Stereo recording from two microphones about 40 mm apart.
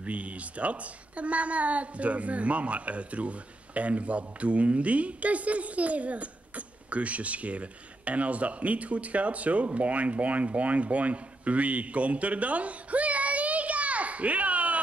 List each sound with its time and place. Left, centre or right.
0.0 s a woman's voice: right